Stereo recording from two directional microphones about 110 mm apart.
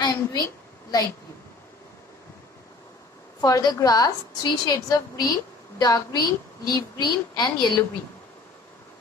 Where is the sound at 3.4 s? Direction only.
40° left (ahead or behind).